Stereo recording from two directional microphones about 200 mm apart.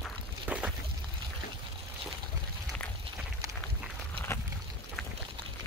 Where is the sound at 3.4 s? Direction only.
15° right (ahead or behind).